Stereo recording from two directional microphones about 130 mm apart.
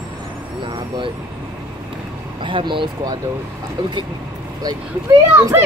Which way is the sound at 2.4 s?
40° right (ahead or behind).